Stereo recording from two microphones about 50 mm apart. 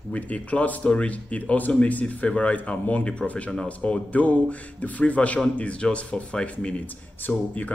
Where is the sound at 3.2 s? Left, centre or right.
Centre.